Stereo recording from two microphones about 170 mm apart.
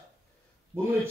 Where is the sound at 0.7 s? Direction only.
15° right (ahead or behind).